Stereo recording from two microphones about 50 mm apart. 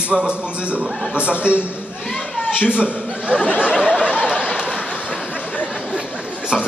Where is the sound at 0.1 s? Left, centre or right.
Right.